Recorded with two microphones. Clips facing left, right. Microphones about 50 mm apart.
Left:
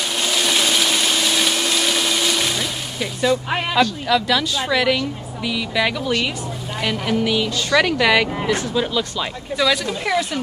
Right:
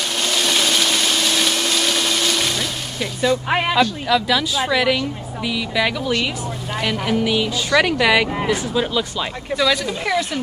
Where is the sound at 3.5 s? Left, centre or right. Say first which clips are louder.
Right 4 dB; right.